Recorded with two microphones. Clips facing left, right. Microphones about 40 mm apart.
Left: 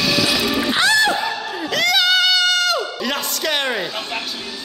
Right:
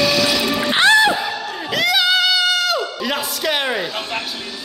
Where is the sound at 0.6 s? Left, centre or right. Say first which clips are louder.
Right 5 dB; right.